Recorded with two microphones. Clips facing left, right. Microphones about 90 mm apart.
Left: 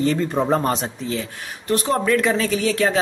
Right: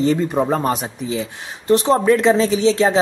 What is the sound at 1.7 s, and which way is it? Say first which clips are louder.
Speech: right 5 dB; 25° right (ahead or behind).